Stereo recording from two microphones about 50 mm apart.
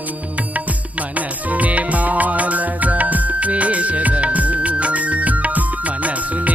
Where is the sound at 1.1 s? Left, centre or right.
Right.